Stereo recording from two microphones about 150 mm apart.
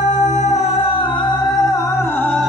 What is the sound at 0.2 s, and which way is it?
Music, 50° left (ahead or behind).